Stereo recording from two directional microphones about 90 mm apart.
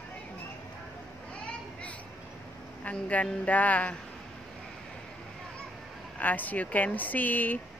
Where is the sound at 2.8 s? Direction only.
15° left (ahead or behind).